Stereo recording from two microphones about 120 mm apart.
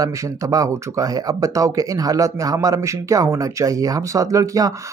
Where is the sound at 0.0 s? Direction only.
25° right (ahead or behind).